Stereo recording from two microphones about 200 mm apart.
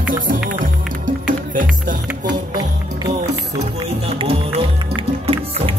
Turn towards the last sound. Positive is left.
turn(degrees=-30)  # may be behind; listen again after turning